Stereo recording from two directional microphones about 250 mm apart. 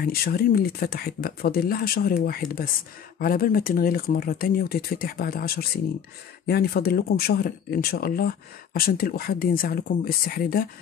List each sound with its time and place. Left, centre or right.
0.0 s speech: left